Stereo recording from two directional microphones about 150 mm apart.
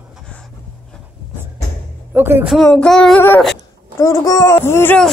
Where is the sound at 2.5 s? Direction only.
5° left (ahead or behind).